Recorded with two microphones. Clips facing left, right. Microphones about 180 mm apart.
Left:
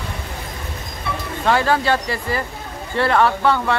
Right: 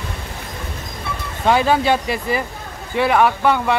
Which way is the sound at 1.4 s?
15° right (ahead or behind).